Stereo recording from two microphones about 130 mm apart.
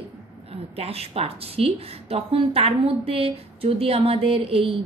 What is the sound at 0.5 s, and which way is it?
A woman's voice, 50° right (ahead or behind).